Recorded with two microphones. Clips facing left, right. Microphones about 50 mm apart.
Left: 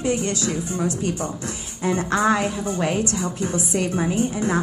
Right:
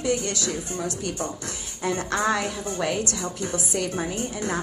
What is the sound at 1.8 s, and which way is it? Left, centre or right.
A woman's voice, left.